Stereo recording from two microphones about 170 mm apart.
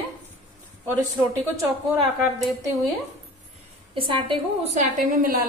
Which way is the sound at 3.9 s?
30° right (ahead or behind).